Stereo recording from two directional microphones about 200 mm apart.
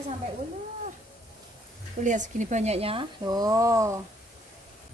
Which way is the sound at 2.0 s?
40° right (ahead or behind).